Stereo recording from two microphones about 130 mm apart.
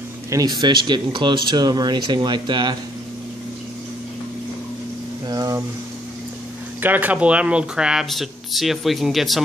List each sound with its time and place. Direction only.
0.3 s speech: 30° right (ahead or behind)
5.3 s a sound: 30° right (ahead or behind)
6.8 s speech: 15° right (ahead or behind)